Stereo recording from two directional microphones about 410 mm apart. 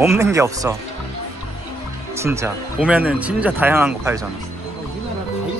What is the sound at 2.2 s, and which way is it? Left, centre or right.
Speech, centre.